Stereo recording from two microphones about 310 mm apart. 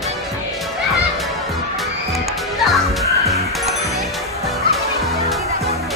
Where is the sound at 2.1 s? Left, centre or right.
Centre.